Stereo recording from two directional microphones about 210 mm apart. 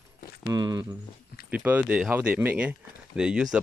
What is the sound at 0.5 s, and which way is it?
Speech, 20° right (ahead or behind).